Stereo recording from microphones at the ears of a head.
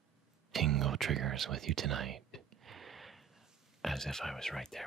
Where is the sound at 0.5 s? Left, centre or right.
Right.